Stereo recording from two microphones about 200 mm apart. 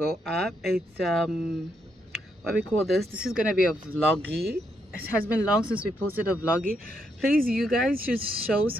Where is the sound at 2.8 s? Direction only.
Centre (ahead or behind).